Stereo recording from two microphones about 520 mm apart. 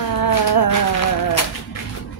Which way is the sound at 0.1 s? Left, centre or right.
Left.